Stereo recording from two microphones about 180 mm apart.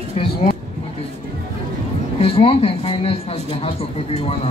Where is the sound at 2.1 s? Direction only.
30° left (ahead or behind).